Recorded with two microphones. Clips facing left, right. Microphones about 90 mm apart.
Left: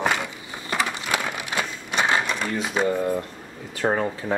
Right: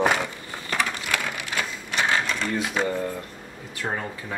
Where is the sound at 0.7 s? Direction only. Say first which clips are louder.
Left 2 dB; 20° left (ahead or behind).